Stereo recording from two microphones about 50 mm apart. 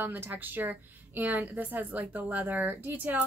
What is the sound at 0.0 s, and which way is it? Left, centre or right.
A woman's voice, right.